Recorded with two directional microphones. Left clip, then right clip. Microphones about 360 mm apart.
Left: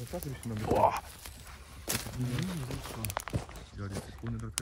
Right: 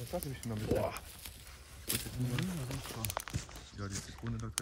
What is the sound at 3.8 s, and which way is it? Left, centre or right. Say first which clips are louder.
Speech: even; right.